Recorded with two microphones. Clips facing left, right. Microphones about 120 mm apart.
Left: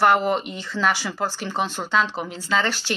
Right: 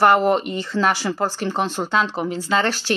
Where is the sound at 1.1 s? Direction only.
40° right (ahead or behind).